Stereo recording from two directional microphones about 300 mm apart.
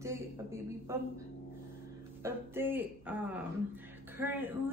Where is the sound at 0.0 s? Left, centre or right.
Centre.